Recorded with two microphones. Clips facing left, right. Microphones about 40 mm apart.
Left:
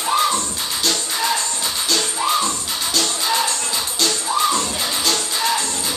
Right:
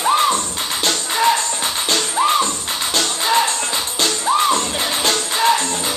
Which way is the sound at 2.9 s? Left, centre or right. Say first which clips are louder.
Right 2 dB; right.